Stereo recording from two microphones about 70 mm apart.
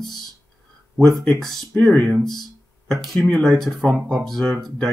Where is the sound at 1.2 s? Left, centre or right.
Centre.